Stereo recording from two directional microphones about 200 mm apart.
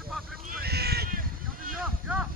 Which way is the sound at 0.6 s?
55° right (ahead or behind).